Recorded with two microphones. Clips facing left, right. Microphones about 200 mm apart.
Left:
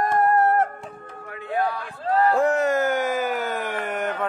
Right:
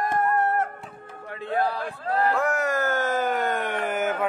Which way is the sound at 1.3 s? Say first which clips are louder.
Even; 35° right (ahead or behind).